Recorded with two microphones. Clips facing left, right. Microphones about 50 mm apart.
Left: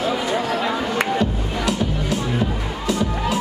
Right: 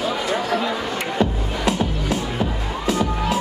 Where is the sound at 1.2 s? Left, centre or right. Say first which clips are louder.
Right 1 dB; right.